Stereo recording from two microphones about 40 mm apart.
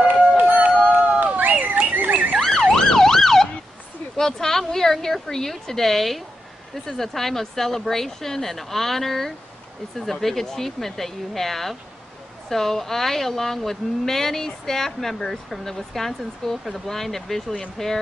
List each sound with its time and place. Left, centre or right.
0.0 s music: right
1.2 s a sound: right
2.7 s emergency vehicle: centre
4.2 s a sound: centre
4.7 s a woman's voice: centre
10.4 s a woman's voice: centre